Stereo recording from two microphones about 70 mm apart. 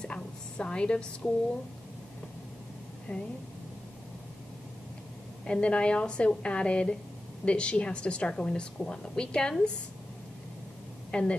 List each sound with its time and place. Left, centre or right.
0.0 s a sound: centre
3.1 s speech: left
5.5 s a woman's voice: centre
11.1 s speech: centre